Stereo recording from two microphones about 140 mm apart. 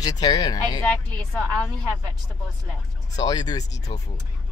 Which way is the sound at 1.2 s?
5° left (ahead or behind).